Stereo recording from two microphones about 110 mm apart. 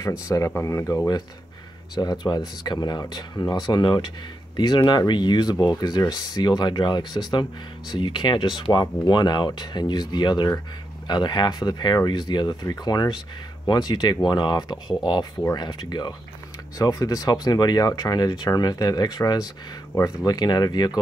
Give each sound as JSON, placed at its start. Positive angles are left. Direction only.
{"t": 0.6, "sound": "speech", "side_deg": 25}
{"t": 20.3, "sound": "speech", "side_deg": 40}